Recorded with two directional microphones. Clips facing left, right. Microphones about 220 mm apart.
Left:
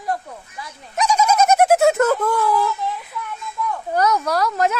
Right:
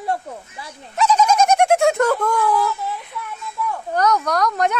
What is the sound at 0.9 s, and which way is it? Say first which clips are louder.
Speech: right 1 dB; 10° left (ahead or behind).